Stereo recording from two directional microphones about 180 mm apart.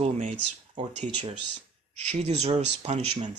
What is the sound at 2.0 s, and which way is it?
Speech, 35° right (ahead or behind).